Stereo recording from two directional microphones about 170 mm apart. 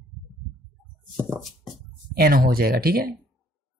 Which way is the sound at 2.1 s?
65° right (ahead or behind).